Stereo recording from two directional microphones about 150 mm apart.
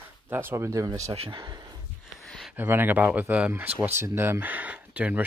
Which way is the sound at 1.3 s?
25° right (ahead or behind).